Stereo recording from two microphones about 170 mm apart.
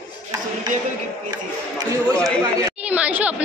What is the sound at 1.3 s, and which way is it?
Speech, 20° right (ahead or behind).